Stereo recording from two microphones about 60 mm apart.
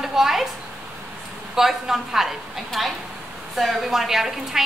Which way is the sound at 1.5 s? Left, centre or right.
Centre.